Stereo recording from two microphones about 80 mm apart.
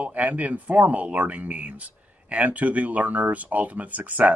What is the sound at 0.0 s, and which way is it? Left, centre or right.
Speech, centre.